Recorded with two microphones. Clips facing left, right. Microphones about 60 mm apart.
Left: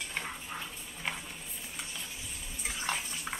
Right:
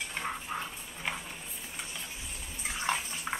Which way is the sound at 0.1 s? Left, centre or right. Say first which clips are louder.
Right 3 dB; centre.